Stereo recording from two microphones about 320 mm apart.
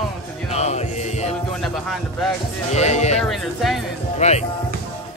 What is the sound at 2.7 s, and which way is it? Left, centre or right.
Speech, left.